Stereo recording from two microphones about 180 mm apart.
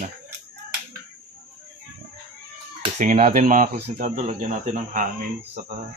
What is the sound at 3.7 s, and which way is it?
Speech, 60° right (ahead or behind).